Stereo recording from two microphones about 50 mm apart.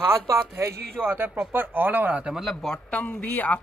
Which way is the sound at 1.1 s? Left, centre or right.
Right.